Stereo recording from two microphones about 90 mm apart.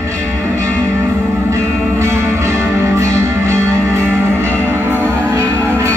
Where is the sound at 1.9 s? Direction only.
30° right (ahead or behind).